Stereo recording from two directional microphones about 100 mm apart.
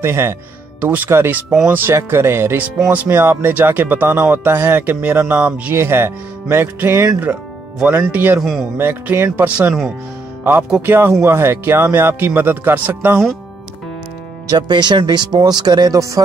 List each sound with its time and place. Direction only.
0.0 s speech: 25° right (ahead or behind)
8.4 s speech: centre (ahead or behind)
8.7 s speech: 25° right (ahead or behind)
10.9 s speech: 25° right (ahead or behind)
14.5 s speech: 50° right (ahead or behind)